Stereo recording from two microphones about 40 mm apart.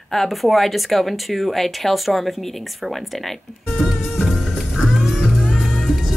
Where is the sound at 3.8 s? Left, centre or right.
Centre.